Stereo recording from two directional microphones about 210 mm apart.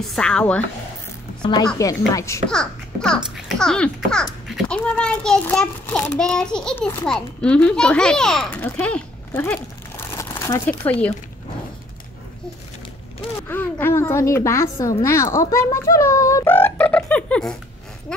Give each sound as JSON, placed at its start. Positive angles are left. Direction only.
{"t": 0.0, "sound": "a child's voice", "side_deg": 0}
{"t": 1.4, "sound": "a woman's voice", "side_deg": 20}
{"t": 2.4, "sound": "a child's voice", "side_deg": 5}
{"t": 13.5, "sound": "a woman's voice", "side_deg": 10}